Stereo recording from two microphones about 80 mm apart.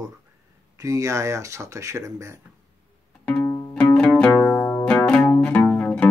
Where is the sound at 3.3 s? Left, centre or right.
Left.